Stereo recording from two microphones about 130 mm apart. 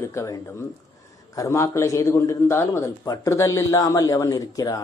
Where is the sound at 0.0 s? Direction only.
20° left (ahead or behind).